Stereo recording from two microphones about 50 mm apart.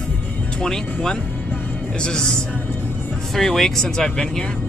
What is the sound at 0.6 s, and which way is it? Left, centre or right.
Speech, centre.